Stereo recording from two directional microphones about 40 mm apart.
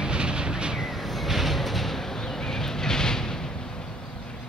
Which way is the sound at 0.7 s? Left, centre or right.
Centre.